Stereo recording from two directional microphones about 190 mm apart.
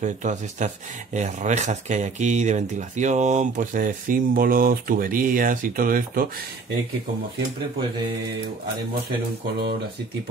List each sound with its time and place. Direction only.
0.0 s speech: 40° right (ahead or behind)